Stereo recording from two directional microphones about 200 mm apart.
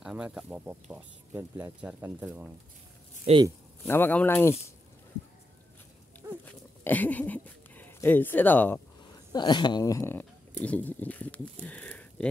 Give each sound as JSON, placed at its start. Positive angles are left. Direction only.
{"t": 0.0, "sound": "speech", "side_deg": -5}
{"t": 3.3, "sound": "speech", "side_deg": -30}
{"t": 3.8, "sound": "speech", "side_deg": 10}
{"t": 6.4, "sound": "a sound", "side_deg": 10}
{"t": 9.3, "sound": "speech", "side_deg": 20}